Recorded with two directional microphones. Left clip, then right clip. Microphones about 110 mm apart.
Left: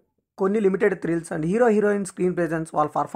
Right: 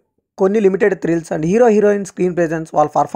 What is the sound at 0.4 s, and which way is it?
Speech, 35° right (ahead or behind).